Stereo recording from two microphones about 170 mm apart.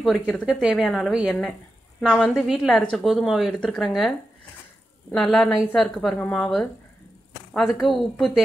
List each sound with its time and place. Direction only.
0.5 s speech: 5° right (ahead or behind)
5.1 s speech: 5° left (ahead or behind)